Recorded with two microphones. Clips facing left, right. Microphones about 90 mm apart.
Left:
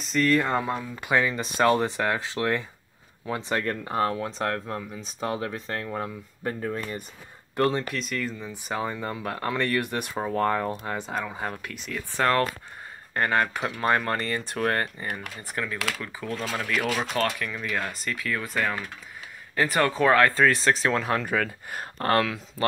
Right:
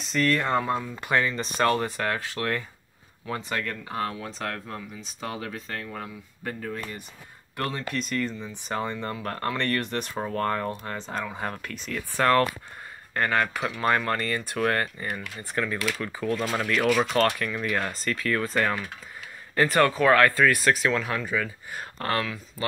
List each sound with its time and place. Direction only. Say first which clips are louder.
0.0 s speech: left 2 dB; centre (ahead or behind); by 3.6 s 25° left (ahead or behind)
3.6 s speech: left 5 dB; 35° left (ahead or behind)
7.9 s speech: right 2 dB; centre (ahead or behind); by 15.2 s 25° left (ahead or behind)
16.1 s speech: right 4 dB; 10° left (ahead or behind)
17.9 s speech: right 3 dB; 10° left (ahead or behind)
19.9 s speech: even; 25° left (ahead or behind)
21.2 s speech: left 2 dB; 55° left (ahead or behind)
21.9 s speech: left 5 dB; 40° left (ahead or behind)